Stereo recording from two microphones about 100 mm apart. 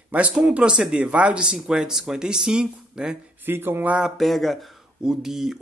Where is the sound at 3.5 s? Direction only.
20° right (ahead or behind).